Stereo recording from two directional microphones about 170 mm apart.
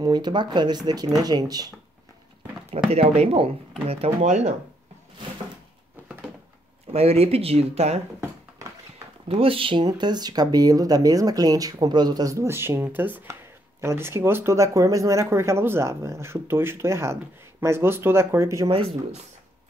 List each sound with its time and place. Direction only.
0.0 s speech: 25° right (ahead or behind)
2.7 s speech: 35° right (ahead or behind)
6.9 s speech: 35° right (ahead or behind)
9.3 s speech: 35° right (ahead or behind); by 18.8 s 15° right (ahead or behind)